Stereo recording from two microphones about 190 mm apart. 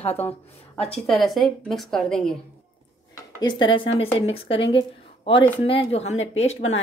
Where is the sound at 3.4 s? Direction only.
25° left (ahead or behind).